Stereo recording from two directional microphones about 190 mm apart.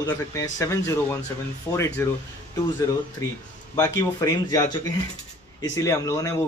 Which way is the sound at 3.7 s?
20° left (ahead or behind).